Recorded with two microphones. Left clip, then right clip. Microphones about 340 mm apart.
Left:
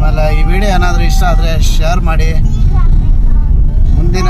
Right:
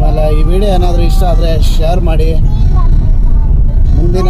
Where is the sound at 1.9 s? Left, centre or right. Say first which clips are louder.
Right 1 dB; centre.